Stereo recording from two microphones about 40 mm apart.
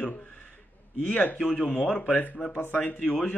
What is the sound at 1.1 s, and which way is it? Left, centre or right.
Speech, left.